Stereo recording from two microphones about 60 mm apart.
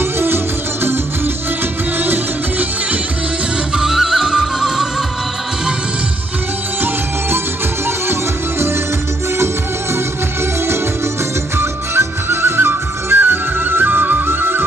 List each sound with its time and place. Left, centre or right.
0.0 s music: right
3.7 s music: centre
6.8 s music: right
11.5 s music: right